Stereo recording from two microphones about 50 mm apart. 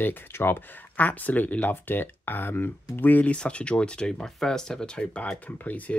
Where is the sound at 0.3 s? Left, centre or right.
Left.